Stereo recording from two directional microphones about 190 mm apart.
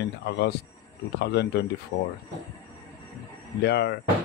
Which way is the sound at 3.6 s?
60° left (ahead or behind).